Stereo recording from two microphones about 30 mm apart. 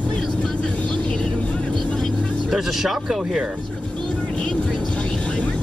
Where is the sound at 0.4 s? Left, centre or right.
Left.